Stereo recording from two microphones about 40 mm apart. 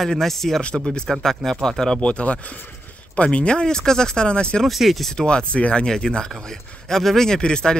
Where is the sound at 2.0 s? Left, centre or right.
Left.